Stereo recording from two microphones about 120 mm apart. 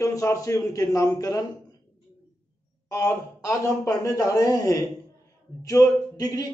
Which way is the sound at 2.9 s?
20° left (ahead or behind).